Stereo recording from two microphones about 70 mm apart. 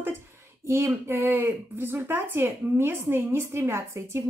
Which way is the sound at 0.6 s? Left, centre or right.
Right.